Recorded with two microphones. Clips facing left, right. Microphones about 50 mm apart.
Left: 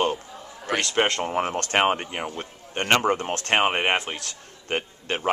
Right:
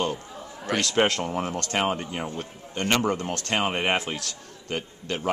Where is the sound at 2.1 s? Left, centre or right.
Left.